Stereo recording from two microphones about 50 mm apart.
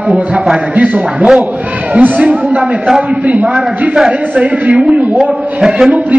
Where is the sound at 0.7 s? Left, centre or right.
Right.